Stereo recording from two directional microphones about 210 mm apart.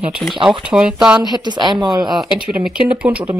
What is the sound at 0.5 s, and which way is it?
Speech, 5° right (ahead or behind).